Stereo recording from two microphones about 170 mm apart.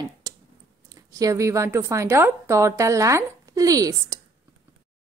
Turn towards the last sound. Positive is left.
turn(degrees=-20)  # may be behind; listen again after turning